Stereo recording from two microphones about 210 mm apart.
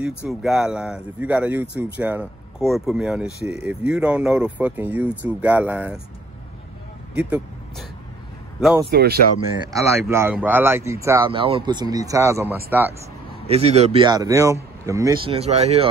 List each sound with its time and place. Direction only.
0.0 s speech: 5° right (ahead or behind)
7.2 s speech: 5° right (ahead or behind)
8.9 s speech: 50° right (ahead or behind)
9.7 s speech: 15° right (ahead or behind)
11.2 s speech: 25° right (ahead or behind)
13.5 s speech: 30° right (ahead or behind)
15.2 s speech: 30° right (ahead or behind)